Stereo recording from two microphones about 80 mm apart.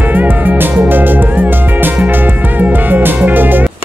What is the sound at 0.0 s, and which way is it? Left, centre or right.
Music, right.